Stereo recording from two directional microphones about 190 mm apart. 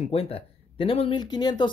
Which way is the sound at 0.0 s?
30° left (ahead or behind).